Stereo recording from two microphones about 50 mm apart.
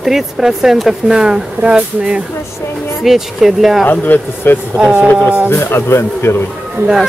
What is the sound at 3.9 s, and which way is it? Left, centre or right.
Speech, left.